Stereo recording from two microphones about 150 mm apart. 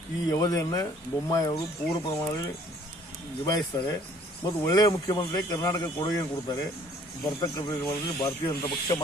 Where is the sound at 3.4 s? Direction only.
25° left (ahead or behind).